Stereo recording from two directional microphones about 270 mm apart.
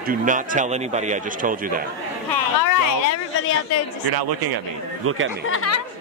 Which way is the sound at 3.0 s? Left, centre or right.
Left.